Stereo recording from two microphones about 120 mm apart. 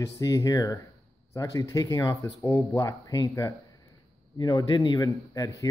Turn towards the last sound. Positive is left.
turn(degrees=30)  # may be behind; listen again after turning